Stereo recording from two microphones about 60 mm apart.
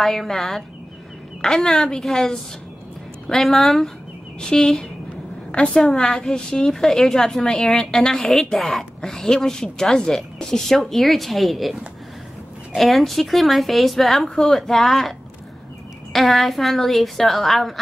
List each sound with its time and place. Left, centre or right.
0.0 s a woman's voice: centre
4.4 s a woman's voice: centre